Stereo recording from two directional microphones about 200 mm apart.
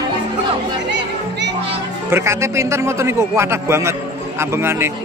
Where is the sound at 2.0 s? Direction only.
15° right (ahead or behind).